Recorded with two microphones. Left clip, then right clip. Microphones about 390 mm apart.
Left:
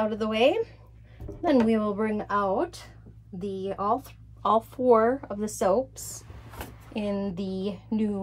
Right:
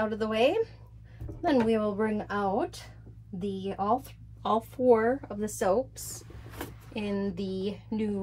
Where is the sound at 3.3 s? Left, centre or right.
Centre.